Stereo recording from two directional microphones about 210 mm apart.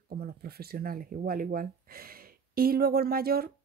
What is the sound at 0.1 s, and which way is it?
Speech, 45° right (ahead or behind).